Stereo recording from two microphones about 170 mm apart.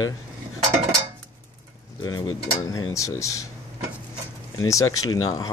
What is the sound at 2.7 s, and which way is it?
Speech, 20° left (ahead or behind).